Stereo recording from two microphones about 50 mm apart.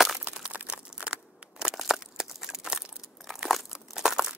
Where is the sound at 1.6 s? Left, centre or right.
Centre.